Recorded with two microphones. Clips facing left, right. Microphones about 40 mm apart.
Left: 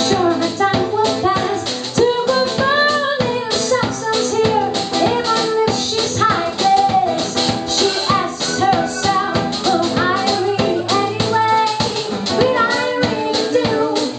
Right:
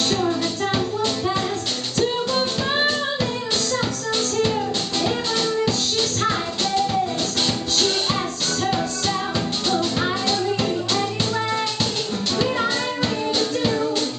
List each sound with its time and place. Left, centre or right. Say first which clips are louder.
0.1 s music: left 9 dB; left
0.4 s music: left 7 dB; centre